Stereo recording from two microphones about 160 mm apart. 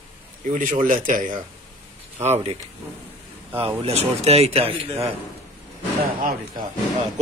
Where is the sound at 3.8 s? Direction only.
40° right (ahead or behind).